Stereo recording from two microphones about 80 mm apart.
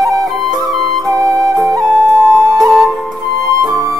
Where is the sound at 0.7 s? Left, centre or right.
Centre.